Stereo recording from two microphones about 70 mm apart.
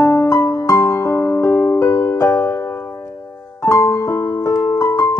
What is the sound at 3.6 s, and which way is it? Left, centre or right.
Music, left.